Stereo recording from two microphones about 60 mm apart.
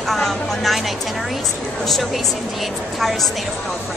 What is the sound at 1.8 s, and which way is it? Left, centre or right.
Speech, centre.